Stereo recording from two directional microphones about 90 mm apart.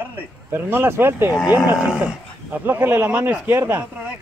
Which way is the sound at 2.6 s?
20° right (ahead or behind).